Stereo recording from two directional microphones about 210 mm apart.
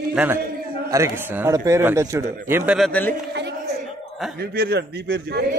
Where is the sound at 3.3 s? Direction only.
55° right (ahead or behind).